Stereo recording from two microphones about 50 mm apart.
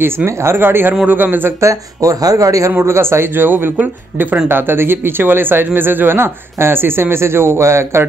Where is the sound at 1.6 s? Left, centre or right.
Right.